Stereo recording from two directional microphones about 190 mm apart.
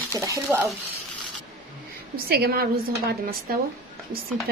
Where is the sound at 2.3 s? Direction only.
55° right (ahead or behind).